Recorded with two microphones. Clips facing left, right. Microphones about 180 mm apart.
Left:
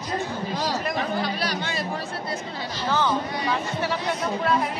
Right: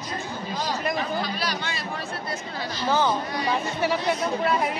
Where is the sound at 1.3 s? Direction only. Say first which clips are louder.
Left 2 dB; 50° left (ahead or behind).